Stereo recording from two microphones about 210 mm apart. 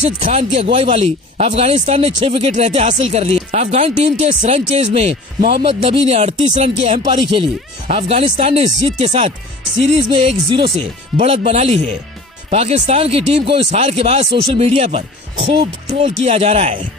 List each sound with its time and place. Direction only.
0.2 s speech: 35° right (ahead or behind)